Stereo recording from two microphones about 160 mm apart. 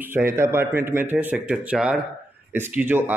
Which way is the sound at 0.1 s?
15° right (ahead or behind).